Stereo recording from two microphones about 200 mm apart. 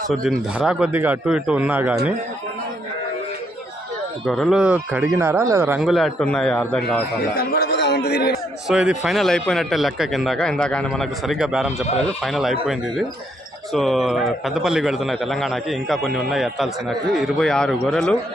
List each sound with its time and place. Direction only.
0.1 s a man's voice: centre (ahead or behind)
4.3 s a man's voice: centre (ahead or behind)
5.8 s a man's voice: centre (ahead or behind)
7.3 s a man's voice: 50° left (ahead or behind)
8.6 s a man's voice: 5° right (ahead or behind)
13.7 s a man's voice: centre (ahead or behind)